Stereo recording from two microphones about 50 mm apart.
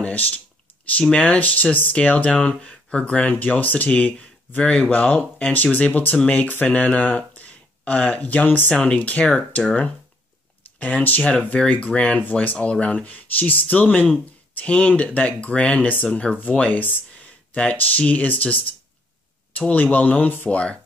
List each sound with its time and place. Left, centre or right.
0.0 s speech: left
5.5 s speech: left
9.2 s speech: centre
10.8 s speech: left
12.5 s speech: centre
12.8 s speech: left